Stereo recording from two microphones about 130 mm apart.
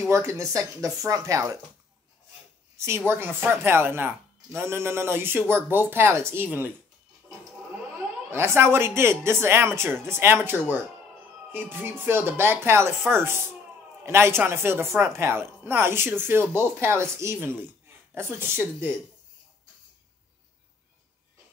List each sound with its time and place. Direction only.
0.1 s a woman's voice: 20° right (ahead or behind)
3.1 s speech: 15° right (ahead or behind)
8.3 s a woman's voice: 20° right (ahead or behind)